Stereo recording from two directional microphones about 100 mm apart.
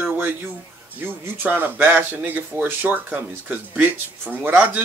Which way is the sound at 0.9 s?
20° right (ahead or behind).